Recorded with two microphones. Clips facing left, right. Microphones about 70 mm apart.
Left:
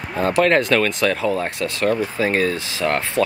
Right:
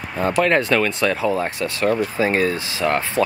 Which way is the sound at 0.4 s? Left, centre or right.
Centre.